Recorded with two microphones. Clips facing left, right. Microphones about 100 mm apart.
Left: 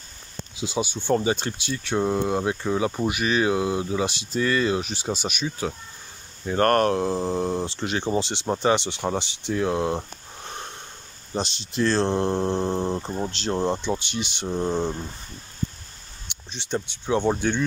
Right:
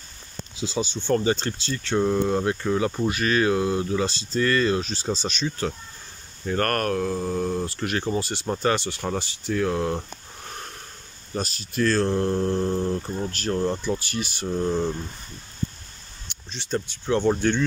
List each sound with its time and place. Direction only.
0.6 s speech: 15° left (ahead or behind)
6.6 s speech: 20° left (ahead or behind)
16.4 s speech: 20° left (ahead or behind)